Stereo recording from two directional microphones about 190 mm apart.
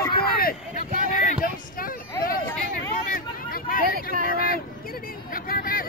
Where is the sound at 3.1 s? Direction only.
50° left (ahead or behind).